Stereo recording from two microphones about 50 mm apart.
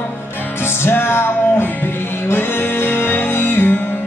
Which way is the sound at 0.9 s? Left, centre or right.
Left.